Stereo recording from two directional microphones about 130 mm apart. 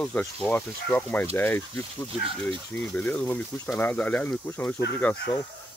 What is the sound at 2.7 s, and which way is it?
Speech, 10° left (ahead or behind).